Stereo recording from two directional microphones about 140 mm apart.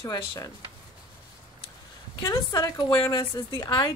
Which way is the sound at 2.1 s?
35° left (ahead or behind).